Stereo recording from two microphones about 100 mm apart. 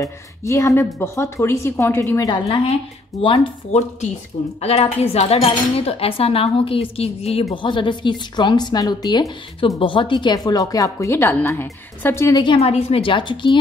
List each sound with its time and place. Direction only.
0.0 s speech: 30° left (ahead or behind)
2.4 s speech: 90° left
3.7 s speech: 90° left
4.6 s cutlery: 90° left
7.5 s a woman's voice: 55° left (ahead or behind)
9.8 s a woman's voice: 60° left (ahead or behind); by 12.3 s 25° left (ahead or behind)
12.3 s a woman's voice: 45° left (ahead or behind)
12.5 s a woman's voice: 85° left; by 13.6 s 55° left (ahead or behind)